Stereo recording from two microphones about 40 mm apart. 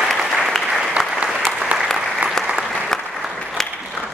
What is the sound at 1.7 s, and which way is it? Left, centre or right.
Applause, right.